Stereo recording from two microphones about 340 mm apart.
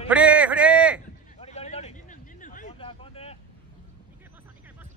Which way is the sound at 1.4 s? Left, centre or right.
Centre.